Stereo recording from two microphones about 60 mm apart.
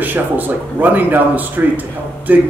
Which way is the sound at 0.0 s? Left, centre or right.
Right.